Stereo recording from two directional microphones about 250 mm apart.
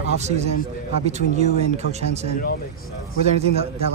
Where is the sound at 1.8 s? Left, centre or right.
Left.